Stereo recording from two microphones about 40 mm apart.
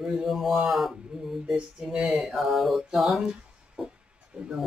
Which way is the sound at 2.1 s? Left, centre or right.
Centre.